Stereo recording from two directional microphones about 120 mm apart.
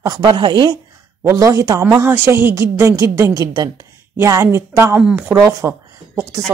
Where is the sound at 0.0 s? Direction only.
35° right (ahead or behind).